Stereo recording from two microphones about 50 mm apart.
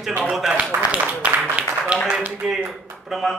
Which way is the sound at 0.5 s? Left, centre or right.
Right.